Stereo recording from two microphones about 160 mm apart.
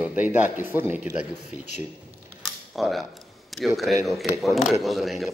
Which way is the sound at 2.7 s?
Centre (ahead or behind).